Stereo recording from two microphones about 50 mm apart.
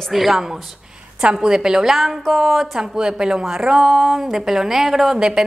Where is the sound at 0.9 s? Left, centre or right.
Centre.